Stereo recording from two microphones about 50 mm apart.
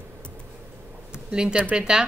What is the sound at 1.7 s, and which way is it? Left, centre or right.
Speech, centre.